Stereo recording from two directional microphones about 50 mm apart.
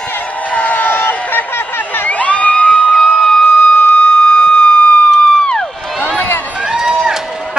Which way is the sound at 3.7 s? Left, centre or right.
Left.